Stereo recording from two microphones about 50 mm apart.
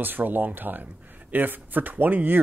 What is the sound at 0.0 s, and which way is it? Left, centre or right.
Speech, right.